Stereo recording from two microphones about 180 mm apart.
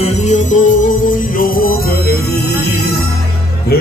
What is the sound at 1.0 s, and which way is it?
Music, 50° left (ahead or behind).